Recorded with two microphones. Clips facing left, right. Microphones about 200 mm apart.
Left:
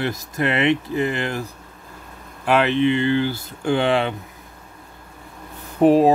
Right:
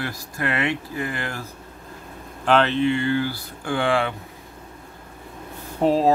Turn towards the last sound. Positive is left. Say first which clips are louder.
# left 5 dB
turn(degrees=15)  # may be behind; listen again after turning